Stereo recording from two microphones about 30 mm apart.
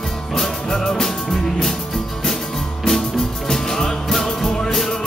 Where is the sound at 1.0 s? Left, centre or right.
Centre.